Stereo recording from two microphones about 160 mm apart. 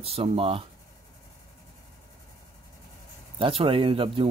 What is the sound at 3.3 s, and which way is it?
Speech, 35° right (ahead or behind).